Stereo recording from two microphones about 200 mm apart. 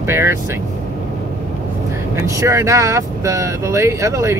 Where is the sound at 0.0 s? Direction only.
10° right (ahead or behind).